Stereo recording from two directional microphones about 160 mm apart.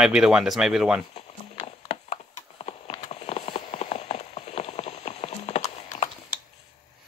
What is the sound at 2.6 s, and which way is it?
Clip-clop, 40° left (ahead or behind).